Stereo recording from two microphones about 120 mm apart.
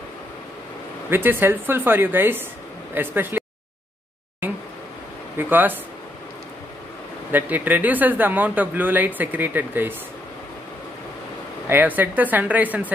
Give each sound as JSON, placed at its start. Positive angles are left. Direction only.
{"t": 1.1, "sound": "speech", "side_deg": -15}
{"t": 5.4, "sound": "speech", "side_deg": -15}
{"t": 7.2, "sound": "speech", "side_deg": -15}
{"t": 11.7, "sound": "speech", "side_deg": -15}